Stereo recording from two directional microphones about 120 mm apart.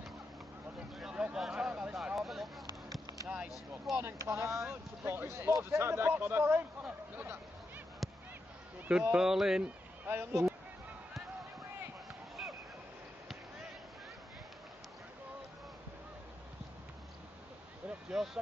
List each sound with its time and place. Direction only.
0.9 s a sound: 5° right (ahead or behind)
3.3 s vehicle: 5° right (ahead or behind)
4.0 s speech: 20° right (ahead or behind)
8.0 s honk: centre (ahead or behind)
9.1 s speech: 5° right (ahead or behind)
10.0 s speech: 20° right (ahead or behind)
17.8 s a sound: 5° right (ahead or behind)